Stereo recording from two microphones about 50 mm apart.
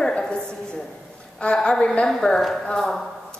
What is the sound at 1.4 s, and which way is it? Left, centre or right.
A woman's voice, centre.